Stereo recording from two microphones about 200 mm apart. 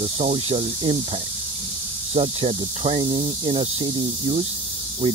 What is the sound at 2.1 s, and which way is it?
Speech, 30° right (ahead or behind).